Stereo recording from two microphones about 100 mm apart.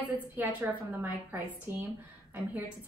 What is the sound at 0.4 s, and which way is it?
A woman's voice, 20° right (ahead or behind).